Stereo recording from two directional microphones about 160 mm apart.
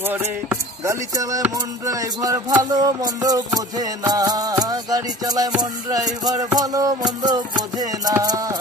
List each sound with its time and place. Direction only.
0.0 s chop: 10° right (ahead or behind)
1.1 s music: 20° right (ahead or behind)